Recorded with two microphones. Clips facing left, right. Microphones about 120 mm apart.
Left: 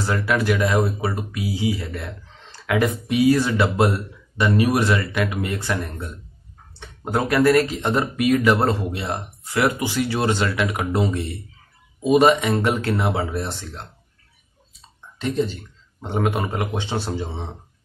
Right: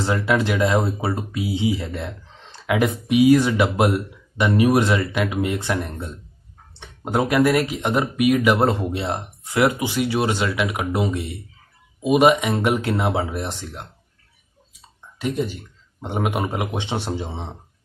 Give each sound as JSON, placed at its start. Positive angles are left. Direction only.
{"t": 0.0, "sound": "speech", "side_deg": -25}